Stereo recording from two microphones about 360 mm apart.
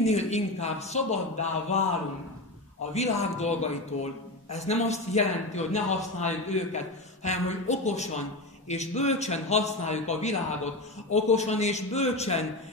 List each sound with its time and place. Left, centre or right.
0.0 s a man's voice: centre
2.9 s a man's voice: centre